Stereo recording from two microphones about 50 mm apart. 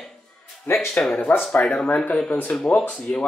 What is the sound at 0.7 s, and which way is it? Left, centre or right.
Speech, left.